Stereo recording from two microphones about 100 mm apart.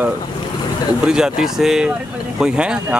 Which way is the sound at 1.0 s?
5° right (ahead or behind).